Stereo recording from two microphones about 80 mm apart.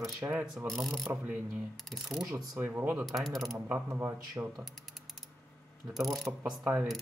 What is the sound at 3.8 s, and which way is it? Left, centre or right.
Speech, right.